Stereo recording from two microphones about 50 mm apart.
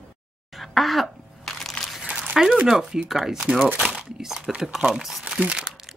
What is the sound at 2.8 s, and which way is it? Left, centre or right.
Speech, centre.